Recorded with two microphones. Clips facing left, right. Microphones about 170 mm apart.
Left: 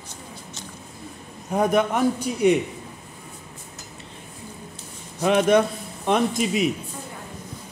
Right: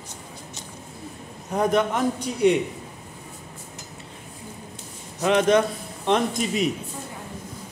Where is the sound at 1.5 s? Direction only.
10° left (ahead or behind).